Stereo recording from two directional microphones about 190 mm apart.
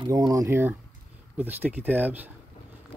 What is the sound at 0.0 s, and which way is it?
Speech, 20° right (ahead or behind).